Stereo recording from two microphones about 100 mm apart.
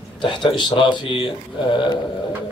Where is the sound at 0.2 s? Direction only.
55° left (ahead or behind).